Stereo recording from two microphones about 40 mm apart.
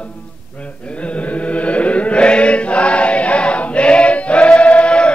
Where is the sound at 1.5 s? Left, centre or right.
Left.